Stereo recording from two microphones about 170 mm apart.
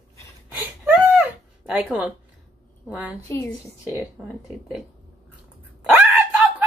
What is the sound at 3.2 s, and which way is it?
Speech, 15° left (ahead or behind).